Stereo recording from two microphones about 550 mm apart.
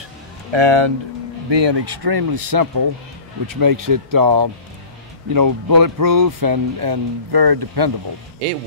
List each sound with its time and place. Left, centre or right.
0.5 s speech: right